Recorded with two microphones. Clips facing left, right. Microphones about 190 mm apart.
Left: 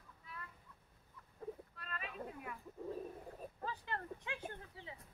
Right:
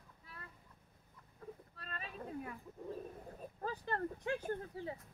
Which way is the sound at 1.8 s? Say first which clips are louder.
Left 1 dB; 35° right (ahead or behind).